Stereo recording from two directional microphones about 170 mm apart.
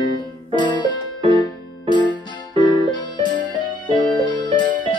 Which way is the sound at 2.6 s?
25° left (ahead or behind).